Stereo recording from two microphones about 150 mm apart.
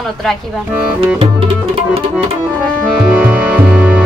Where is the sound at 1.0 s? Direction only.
40° right (ahead or behind).